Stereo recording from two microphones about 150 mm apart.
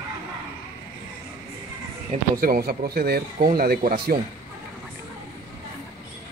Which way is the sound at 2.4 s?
75° right (ahead or behind).